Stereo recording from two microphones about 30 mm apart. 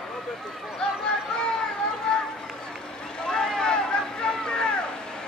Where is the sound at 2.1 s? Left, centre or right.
Left.